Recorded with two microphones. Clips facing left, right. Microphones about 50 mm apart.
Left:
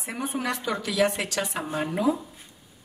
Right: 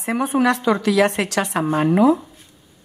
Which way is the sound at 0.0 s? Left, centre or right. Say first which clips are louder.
Right 11 dB; right.